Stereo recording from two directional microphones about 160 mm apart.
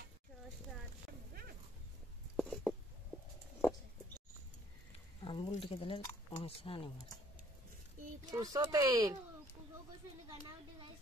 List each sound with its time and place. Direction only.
2.3 s a sound: centre (ahead or behind)
5.2 s squish: 30° left (ahead or behind)
5.6 s speech: 35° left (ahead or behind)
8.3 s speech: 25° right (ahead or behind)